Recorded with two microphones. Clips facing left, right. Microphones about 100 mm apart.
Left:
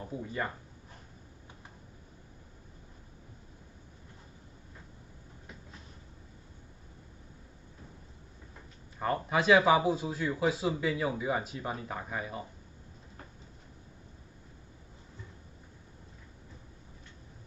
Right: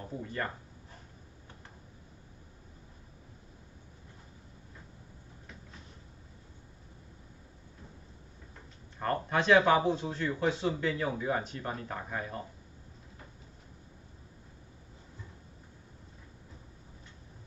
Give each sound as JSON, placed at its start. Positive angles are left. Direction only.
{"t": 0.1, "sound": "speech", "side_deg": 10}
{"t": 9.0, "sound": "a man's voice", "side_deg": 5}